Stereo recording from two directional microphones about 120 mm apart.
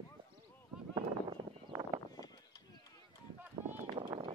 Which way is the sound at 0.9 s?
40° right (ahead or behind).